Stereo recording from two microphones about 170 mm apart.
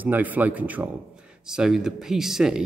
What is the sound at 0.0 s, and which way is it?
Speech, 10° right (ahead or behind).